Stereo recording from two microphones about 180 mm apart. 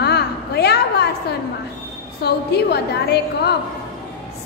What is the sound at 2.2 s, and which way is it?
A woman's voice, 65° left (ahead or behind).